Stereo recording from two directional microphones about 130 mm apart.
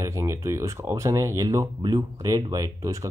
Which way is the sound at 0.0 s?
25° right (ahead or behind).